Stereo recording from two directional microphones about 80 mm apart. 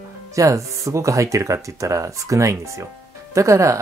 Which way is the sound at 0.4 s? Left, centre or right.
Right.